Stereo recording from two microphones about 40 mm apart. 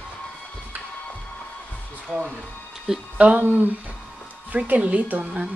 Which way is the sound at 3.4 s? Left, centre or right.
Right.